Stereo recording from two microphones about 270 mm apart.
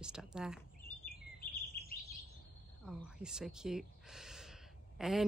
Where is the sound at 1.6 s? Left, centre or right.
Left.